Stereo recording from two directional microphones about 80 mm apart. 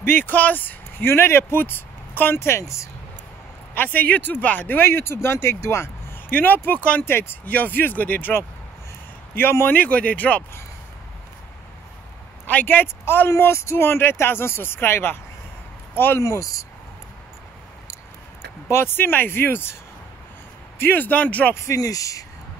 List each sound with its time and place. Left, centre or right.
0.0 s speech: left
3.7 s speech: left
6.3 s speech: left
9.8 s speech: centre
12.4 s speech: left
16.2 s speech: left
18.7 s speech: left
20.8 s speech: left
21.6 s speech: left